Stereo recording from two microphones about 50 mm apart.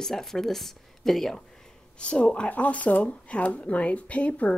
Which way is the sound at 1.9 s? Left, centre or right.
Left.